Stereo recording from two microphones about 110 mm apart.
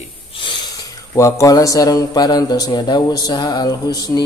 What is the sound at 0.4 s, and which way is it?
Snort, 50° left (ahead or behind).